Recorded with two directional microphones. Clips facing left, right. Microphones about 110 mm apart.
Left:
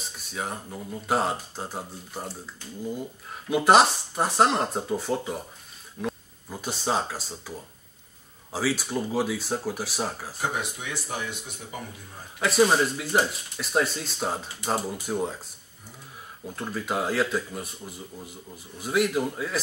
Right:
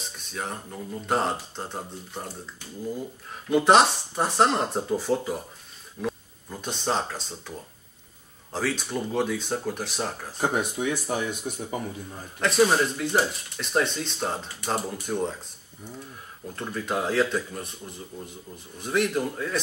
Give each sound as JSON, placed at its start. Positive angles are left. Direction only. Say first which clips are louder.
{"t": 0.2, "sound": "speech", "louder": "left 1 dB", "side_deg": 5}
{"t": 10.6, "sound": "speech", "louder": "right 7 dB", "side_deg": -45}
{"t": 12.4, "sound": "speech", "louder": "even", "side_deg": 5}
{"t": 16.4, "sound": "speech", "louder": "even", "side_deg": 5}